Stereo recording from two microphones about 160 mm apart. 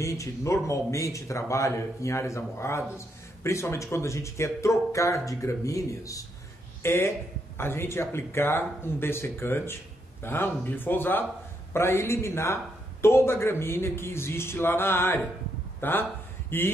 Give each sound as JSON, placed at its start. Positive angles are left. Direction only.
{"t": 0.0, "sound": "a man's voice", "side_deg": 20}